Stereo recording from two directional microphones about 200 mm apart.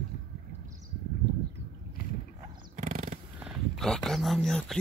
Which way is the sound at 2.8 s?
40° right (ahead or behind).